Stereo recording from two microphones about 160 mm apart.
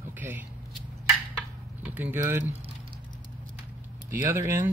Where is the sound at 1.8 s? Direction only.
10° right (ahead or behind).